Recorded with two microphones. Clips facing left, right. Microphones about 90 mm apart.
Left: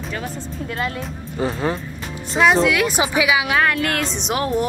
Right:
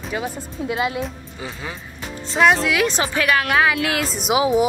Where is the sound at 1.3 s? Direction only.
45° left (ahead or behind).